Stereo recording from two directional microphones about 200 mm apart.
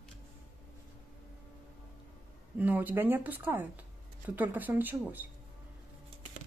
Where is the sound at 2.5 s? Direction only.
10° right (ahead or behind).